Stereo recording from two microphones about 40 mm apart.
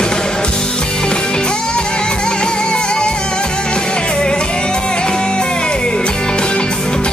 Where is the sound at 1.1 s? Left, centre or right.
Left.